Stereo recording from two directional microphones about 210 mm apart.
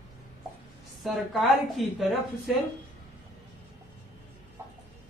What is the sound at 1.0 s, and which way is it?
Speech, centre (ahead or behind).